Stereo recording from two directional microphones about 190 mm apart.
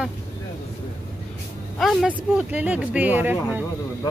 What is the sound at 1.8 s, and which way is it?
Speech, 5° right (ahead or behind).